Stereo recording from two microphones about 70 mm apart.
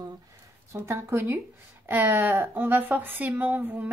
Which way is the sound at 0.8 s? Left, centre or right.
Right.